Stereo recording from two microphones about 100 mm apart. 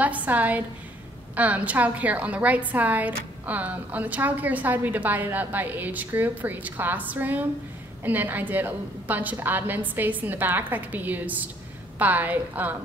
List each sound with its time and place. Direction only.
0.0 s a woman's voice: 15° right (ahead or behind)